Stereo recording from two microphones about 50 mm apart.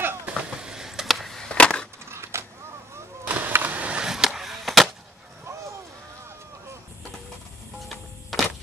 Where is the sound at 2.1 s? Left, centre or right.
Right.